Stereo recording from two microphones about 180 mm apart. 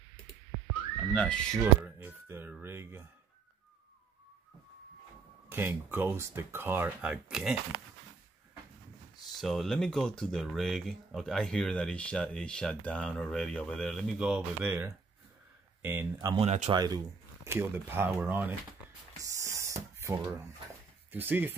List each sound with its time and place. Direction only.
1.1 s speech: 5° left (ahead or behind)
1.6 s speech: 10° right (ahead or behind)
5.5 s speech: 10° right (ahead or behind)
9.4 s speech: centre (ahead or behind); by 16.3 s 15° right (ahead or behind)
16.3 s speech: 40° right (ahead or behind)
16.7 s speech: 20° right (ahead or behind)
19.1 s a sound: 15° right (ahead or behind)
21.1 s speech: 10° right (ahead or behind)